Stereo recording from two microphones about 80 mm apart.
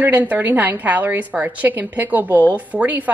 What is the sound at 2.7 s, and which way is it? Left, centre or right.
Speech, centre.